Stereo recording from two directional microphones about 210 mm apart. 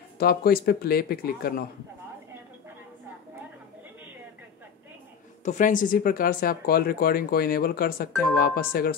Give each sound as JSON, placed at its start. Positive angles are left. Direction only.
{"t": 0.2, "sound": "speech", "side_deg": 45}
{"t": 5.4, "sound": "speech", "side_deg": 35}